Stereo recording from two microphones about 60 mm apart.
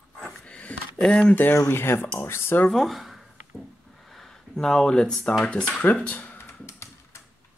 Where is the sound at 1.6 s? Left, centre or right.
Left.